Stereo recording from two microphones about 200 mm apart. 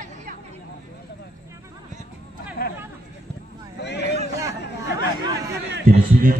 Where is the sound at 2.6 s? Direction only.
45° left (ahead or behind).